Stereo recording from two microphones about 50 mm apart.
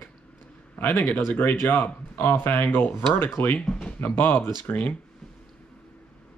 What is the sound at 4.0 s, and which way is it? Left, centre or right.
Speech, left.